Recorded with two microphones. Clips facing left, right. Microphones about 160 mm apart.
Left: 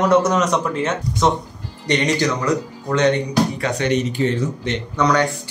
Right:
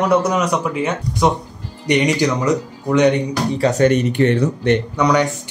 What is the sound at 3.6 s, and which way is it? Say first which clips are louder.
Speech: right 5 dB; 45° right (ahead or behind).